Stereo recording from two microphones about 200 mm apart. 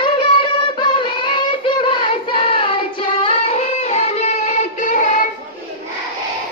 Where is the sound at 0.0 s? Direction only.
25° left (ahead or behind); by 5.2 s 40° left (ahead or behind).